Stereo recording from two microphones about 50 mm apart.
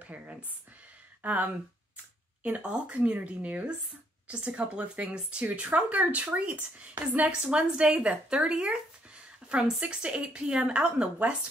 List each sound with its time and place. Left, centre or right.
0.0 s speech: right
5.5 s speech: right
8.3 s a sound: centre
9.8 s speech: right